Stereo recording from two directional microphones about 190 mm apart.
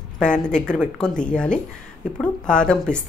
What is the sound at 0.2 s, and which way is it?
Speech, 5° left (ahead or behind).